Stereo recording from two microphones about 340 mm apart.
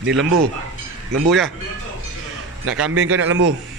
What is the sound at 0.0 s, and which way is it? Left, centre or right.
Speech, right.